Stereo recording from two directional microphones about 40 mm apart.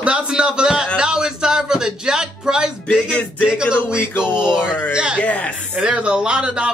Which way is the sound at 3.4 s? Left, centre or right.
Right.